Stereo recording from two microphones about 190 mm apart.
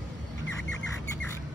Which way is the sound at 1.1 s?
10° left (ahead or behind).